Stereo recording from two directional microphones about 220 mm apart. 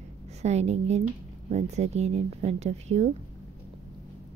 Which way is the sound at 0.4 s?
30° right (ahead or behind).